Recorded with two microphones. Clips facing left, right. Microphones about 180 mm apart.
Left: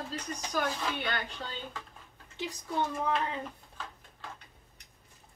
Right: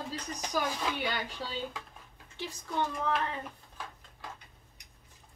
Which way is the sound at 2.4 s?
15° left (ahead or behind).